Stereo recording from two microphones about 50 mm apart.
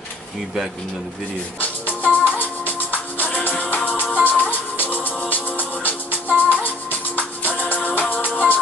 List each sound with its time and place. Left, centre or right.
1.6 s music: left